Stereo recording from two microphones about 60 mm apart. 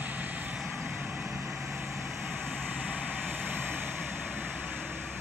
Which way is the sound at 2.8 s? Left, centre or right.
Right.